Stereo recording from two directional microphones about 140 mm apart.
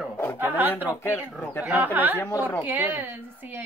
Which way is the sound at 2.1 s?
20° left (ahead or behind).